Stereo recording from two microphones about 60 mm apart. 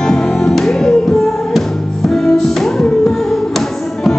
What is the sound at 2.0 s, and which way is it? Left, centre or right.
Music, centre.